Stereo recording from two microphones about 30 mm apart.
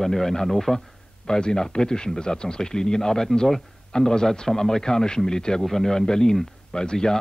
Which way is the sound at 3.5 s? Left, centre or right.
Centre.